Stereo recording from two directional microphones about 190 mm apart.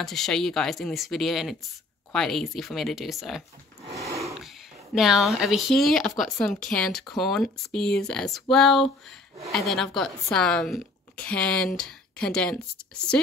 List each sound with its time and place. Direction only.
0.0 s a woman's voice: centre (ahead or behind)
3.9 s a sound: 15° right (ahead or behind)
4.9 s a woman's voice: centre (ahead or behind)